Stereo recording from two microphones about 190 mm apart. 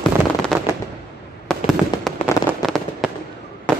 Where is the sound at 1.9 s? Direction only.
25° left (ahead or behind).